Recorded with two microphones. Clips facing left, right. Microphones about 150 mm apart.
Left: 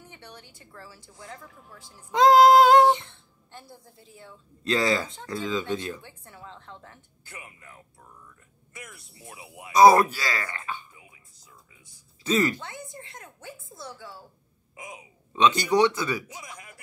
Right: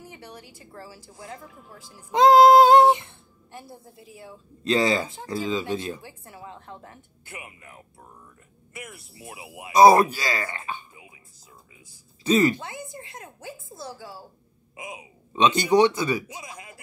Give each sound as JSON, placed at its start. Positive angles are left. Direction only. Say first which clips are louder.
{"t": 0.1, "sound": "a sound", "louder": "right 4 dB", "side_deg": -25}
{"t": 0.7, "sound": "speech", "louder": "right 4 dB", "side_deg": -30}
{"t": 3.9, "sound": "a woman's voice", "louder": "right 5 dB", "side_deg": -70}
{"t": 4.2, "sound": "speech", "louder": "right 4 dB", "side_deg": -25}
{"t": 14.8, "sound": "speech", "louder": "right 4 dB", "side_deg": -20}